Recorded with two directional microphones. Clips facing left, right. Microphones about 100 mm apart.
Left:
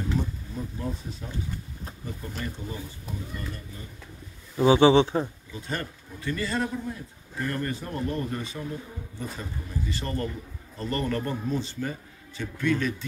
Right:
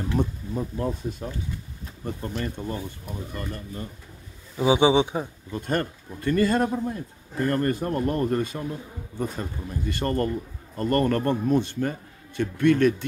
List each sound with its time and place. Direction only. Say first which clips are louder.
0.1 s speech: right 4 dB; 55° right (ahead or behind)
1.2 s speech: right 5 dB; 40° right (ahead or behind)
2.0 s a man's voice: right 6 dB; 50° right (ahead or behind)
4.6 s a man's voice: left 1 dB; 15° right (ahead or behind)
5.5 s a man's voice: right 7 dB; 50° right (ahead or behind)